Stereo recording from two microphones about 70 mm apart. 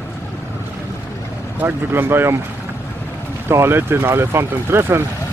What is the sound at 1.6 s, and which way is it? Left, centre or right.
Speech, right.